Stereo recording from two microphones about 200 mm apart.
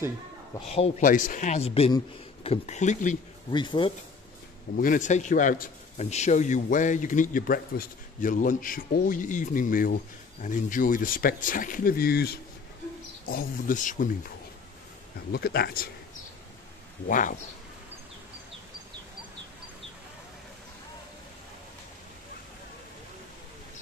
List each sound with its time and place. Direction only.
0.7 s a man's voice: 30° left (ahead or behind)
3.5 s speech: 25° left (ahead or behind)
4.7 s a man's voice: 40° left (ahead or behind)
15.3 s speech: 50° left (ahead or behind)
17.1 s a man's voice: 40° left (ahead or behind)